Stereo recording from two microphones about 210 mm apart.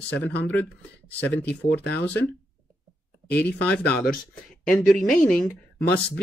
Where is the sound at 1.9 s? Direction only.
5° left (ahead or behind).